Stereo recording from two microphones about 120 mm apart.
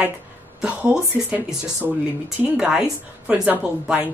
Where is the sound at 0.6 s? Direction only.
10° right (ahead or behind).